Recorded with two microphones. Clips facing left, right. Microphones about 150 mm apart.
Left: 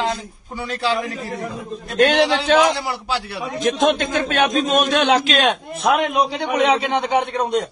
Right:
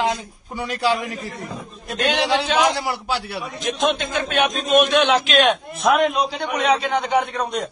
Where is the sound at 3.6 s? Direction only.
50° left (ahead or behind).